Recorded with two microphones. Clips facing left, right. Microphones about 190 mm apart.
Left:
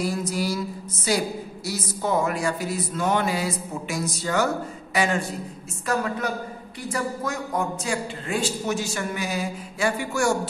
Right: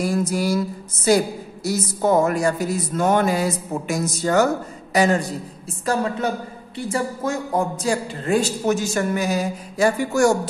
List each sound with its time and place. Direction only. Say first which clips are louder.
0.2 s a woman's voice: right 5 dB; 50° right (ahead or behind)
5.9 s a woman's voice: right 4 dB; 25° right (ahead or behind)